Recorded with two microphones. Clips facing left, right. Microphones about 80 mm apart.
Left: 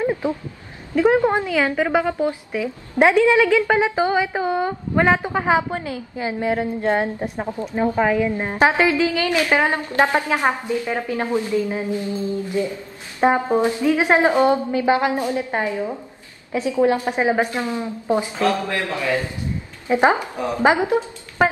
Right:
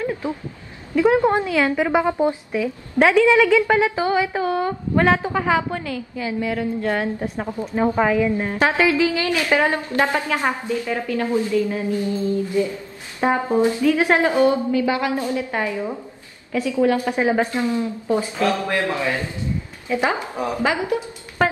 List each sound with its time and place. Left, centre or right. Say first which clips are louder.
0.0 s a sound: left 4 dB; left
0.9 s a woman's voice: even; left
1.9 s a woman's voice: right 1 dB; right
2.5 s a woman's voice: right 2 dB; centre
7.2 s speech: even; centre
7.8 s a woman's voice: even; centre
8.1 s a woman's voice: right 1 dB; left
19.9 s a woman's voice: left 5 dB; left
20.2 s a woman's voice: even; centre
20.5 s a woman's voice: left 6 dB; left
21.4 s music: left 2 dB; centre